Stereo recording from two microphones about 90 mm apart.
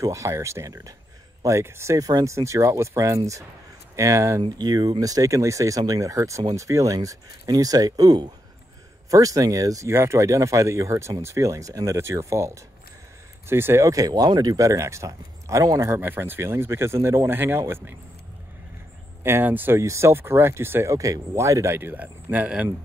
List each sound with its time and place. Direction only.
0.0 s speech: 35° right (ahead or behind)
4.4 s speech: 50° right (ahead or behind)
15.9 s speech: 25° right (ahead or behind)
19.2 s speech: 25° right (ahead or behind)
20.9 s speech: 40° right (ahead or behind)
21.7 s speech: 20° right (ahead or behind)